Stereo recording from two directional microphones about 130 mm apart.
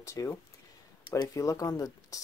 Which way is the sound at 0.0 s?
25° left (ahead or behind).